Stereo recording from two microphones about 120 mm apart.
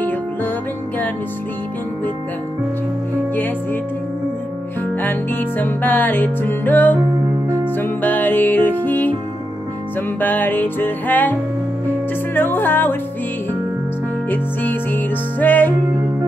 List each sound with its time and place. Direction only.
5.0 s music: 15° left (ahead or behind)
10.2 s music: 15° left (ahead or behind)
12.4 s music: 15° left (ahead or behind)
14.3 s music: 15° left (ahead or behind)